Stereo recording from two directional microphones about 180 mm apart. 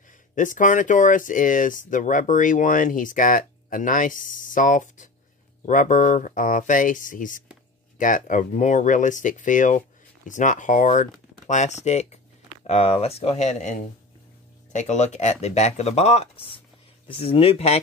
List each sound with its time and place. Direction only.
0.4 s speech: 45° left (ahead or behind)